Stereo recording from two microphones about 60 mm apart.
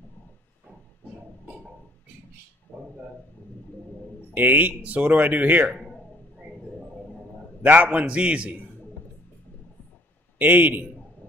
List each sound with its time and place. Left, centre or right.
2.7 s a sound: centre
4.3 s a man's voice: right
7.6 s a man's voice: right
10.4 s a man's voice: right